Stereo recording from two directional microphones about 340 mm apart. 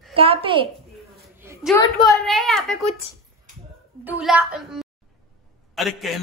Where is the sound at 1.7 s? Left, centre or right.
Centre.